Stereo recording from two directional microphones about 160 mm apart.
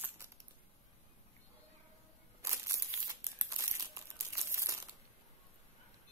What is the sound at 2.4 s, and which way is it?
Crumpling, 20° right (ahead or behind).